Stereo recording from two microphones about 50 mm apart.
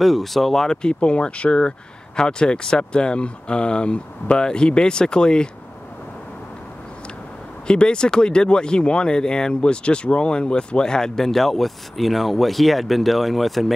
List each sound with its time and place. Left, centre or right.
0.0 s speech: centre
7.6 s speech: centre